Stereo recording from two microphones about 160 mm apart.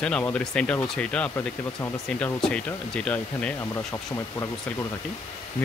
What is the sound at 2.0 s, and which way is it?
Speech, 5° left (ahead or behind).